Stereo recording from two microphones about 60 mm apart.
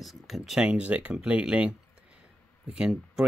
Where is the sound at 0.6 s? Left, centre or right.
Centre.